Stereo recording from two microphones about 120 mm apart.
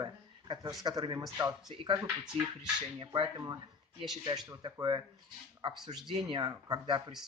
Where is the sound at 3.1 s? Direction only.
35° right (ahead or behind).